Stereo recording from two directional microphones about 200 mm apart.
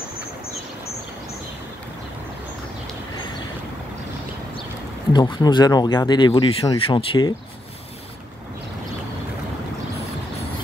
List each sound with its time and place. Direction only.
5.1 s speech: 20° left (ahead or behind)